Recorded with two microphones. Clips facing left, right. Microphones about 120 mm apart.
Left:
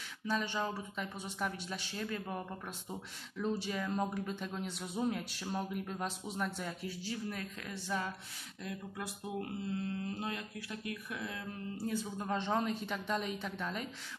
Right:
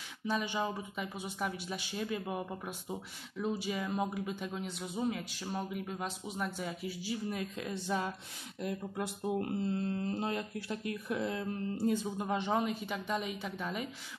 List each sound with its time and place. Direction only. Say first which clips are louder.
0.3 s speech: right 1 dB; 15° right (ahead or behind)